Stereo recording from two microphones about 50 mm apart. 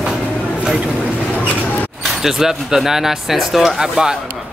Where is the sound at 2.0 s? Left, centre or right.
Centre.